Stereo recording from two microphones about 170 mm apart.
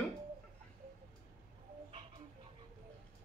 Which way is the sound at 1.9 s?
30° right (ahead or behind).